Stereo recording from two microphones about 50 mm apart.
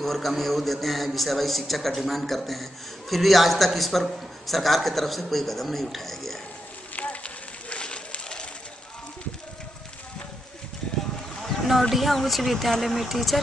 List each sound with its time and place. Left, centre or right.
0.0 s a man's voice: centre
7.0 s a sound: left
11.9 s a man's voice: centre